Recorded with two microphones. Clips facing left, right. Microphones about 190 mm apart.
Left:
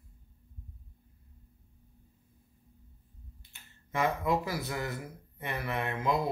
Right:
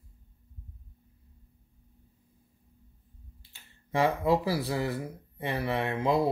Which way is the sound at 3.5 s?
30° right (ahead or behind).